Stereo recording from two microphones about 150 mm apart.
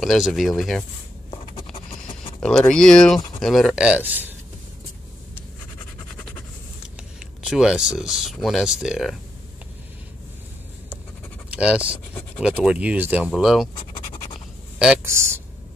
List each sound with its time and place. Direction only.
0.0 s speech: centre (ahead or behind)
1.3 s patter: 35° left (ahead or behind)
2.7 s speech: 5° left (ahead or behind); by 4.3 s 10° right (ahead or behind)
7.0 s speech: 5° right (ahead or behind)
11.5 s speech: 5° right (ahead or behind)
13.3 s speech: centre (ahead or behind)
13.7 s scratch: 40° left (ahead or behind)
15.0 s speech: 15° right (ahead or behind)